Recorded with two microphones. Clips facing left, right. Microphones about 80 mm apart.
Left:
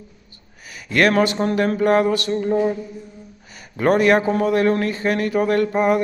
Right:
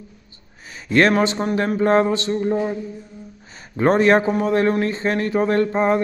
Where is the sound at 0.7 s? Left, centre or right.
Right.